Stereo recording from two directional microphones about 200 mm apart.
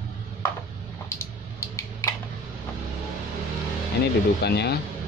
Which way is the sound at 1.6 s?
15° left (ahead or behind).